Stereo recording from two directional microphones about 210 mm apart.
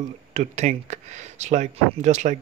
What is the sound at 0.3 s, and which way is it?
Speech, 35° right (ahead or behind).